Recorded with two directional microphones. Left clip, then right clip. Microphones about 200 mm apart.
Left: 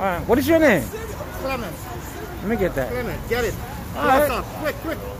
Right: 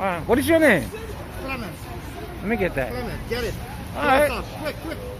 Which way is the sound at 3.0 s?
15° left (ahead or behind).